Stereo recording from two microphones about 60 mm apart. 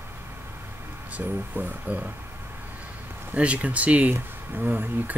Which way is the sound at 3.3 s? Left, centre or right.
Right.